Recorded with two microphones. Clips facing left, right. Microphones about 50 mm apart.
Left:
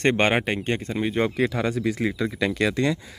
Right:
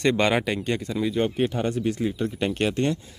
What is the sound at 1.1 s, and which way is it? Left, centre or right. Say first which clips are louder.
Speech: left 2 dB; left.